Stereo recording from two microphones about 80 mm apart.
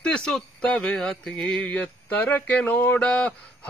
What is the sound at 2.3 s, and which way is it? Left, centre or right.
A man's voice, left.